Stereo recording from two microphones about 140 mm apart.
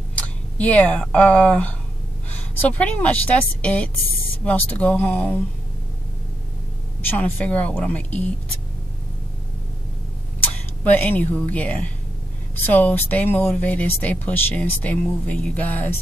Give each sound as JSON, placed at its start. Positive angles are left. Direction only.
{"t": 0.1, "sound": "a woman's voice", "side_deg": 10}
{"t": 7.0, "sound": "speech", "side_deg": 10}
{"t": 10.8, "sound": "speech", "side_deg": 10}